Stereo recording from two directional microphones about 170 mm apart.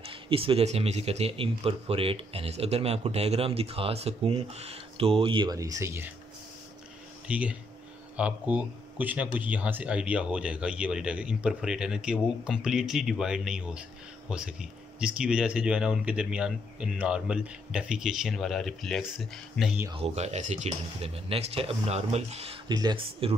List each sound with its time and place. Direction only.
0.0 s speech: 35° right (ahead or behind); by 6.1 s 15° right (ahead or behind)
7.2 s speech: 10° right (ahead or behind)
19.9 s speech: 35° right (ahead or behind)
22.7 s speech: 25° right (ahead or behind)